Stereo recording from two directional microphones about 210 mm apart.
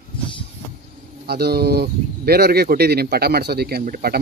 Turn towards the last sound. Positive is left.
turn(degrees=-45)  # may be behind; listen again after turning